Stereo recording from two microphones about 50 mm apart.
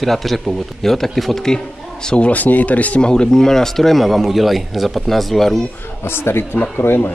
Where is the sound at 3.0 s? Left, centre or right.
Centre.